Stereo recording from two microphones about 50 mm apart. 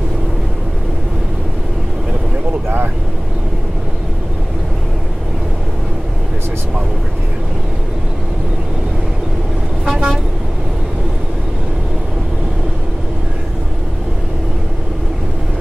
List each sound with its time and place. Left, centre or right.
9.8 s vehicle: right